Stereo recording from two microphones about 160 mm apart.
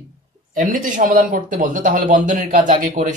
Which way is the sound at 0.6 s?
60° right (ahead or behind).